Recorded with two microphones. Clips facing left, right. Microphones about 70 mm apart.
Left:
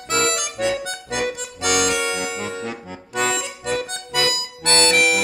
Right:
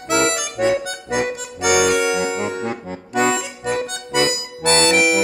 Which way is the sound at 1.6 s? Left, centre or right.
Centre.